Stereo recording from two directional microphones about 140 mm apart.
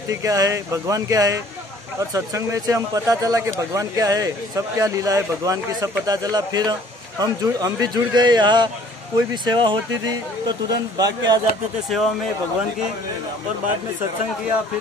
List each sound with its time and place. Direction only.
0.1 s speech: 25° right (ahead or behind)
11.9 s speech: centre (ahead or behind)